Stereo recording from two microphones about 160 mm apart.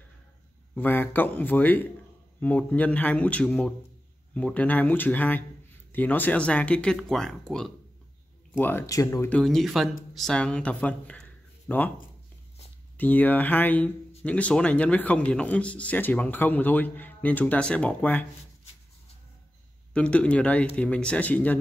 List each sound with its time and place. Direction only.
0.7 s a man's voice: 10° left (ahead or behind)
8.5 s a man's voice: 15° left (ahead or behind)
9.3 s speech: centre (ahead or behind)
12.9 s a man's voice: 10° left (ahead or behind)
19.9 s a man's voice: 10° left (ahead or behind)